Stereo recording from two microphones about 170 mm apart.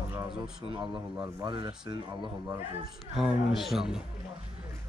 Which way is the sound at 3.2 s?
Centre (ahead or behind).